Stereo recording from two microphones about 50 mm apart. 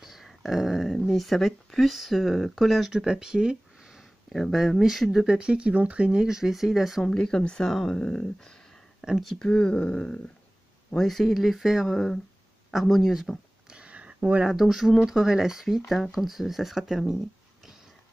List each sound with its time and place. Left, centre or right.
0.0 s a sound: centre
1.0 s speech: centre
4.3 s speech: centre
5.2 s speech: centre
7.1 s speech: centre
9.4 s speech: centre
11.0 s speech: centre
11.9 s speech: centre
12.7 s speech: centre
13.7 s a sound: right
14.5 s speech: centre